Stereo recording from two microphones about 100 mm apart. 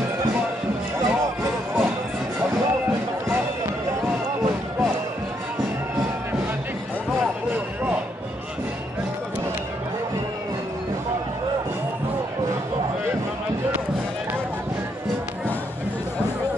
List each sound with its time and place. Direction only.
1.0 s music: 30° right (ahead or behind)